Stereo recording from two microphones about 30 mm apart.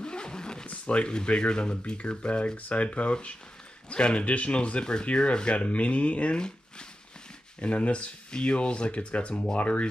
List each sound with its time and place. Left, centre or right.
0.0 s zipper: left
0.8 s speech: left
2.5 s speech: left
6.3 s speech: left
7.6 s speech: left
8.3 s speech: left